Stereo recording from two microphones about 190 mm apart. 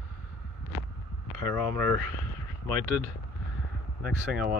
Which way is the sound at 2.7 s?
45° right (ahead or behind).